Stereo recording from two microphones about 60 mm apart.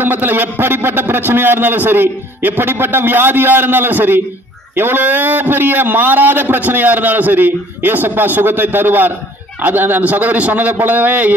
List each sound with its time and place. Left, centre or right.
0.0 s a man's voice: right